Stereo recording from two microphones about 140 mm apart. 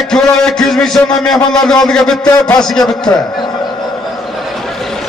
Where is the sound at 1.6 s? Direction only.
5° left (ahead or behind).